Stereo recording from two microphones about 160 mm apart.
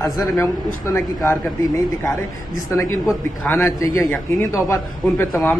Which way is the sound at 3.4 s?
15° left (ahead or behind).